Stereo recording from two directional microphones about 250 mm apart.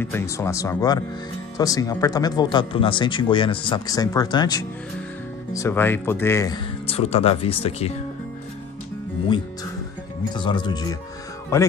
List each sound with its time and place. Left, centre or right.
0.0 s speech: centre
10.3 s speech: centre